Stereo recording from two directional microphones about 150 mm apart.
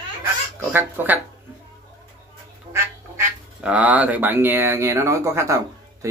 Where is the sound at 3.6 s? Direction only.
10° right (ahead or behind).